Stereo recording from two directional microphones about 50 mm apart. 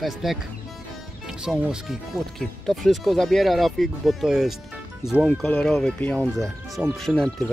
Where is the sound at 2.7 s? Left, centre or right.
Centre.